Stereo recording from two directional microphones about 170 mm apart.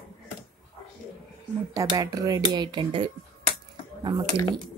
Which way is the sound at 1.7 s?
25° right (ahead or behind).